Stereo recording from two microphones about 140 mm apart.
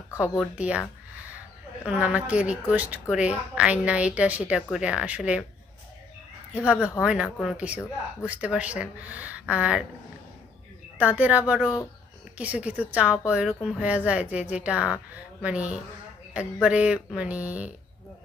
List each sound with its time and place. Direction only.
0.1 s speech: 20° left (ahead or behind)
0.6 s speech: 10° right (ahead or behind)
1.9 s speech: 10° right (ahead or behind)
6.5 s speech: 10° right (ahead or behind)
11.0 s speech: 10° right (ahead or behind)